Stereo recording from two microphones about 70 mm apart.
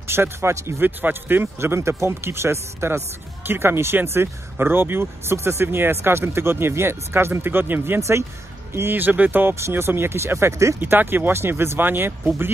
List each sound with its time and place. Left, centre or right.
0.0 s speech: right
10.8 s speech: right